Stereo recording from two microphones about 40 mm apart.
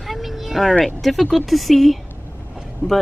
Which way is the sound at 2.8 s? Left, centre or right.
Left.